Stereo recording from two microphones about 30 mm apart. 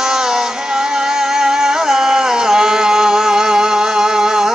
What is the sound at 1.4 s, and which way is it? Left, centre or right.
Music, centre.